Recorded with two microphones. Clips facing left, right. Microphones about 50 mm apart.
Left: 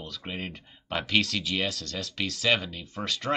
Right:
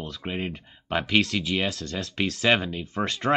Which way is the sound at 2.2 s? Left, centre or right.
Right.